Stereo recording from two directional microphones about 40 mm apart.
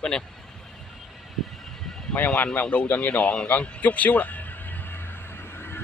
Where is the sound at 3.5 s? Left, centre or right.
Left.